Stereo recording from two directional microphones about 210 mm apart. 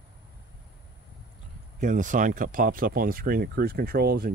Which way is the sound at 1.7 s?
35° right (ahead or behind).